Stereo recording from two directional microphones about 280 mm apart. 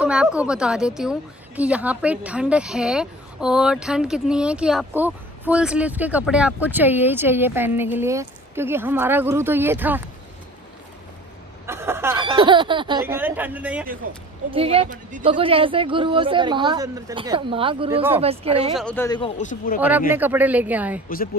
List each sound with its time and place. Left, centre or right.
0.0 s a woman's voice: centre
11.6 s speech: centre
14.5 s speech: centre
18.8 s speech: centre; by 19.8 s left
20.2 s a woman's voice: centre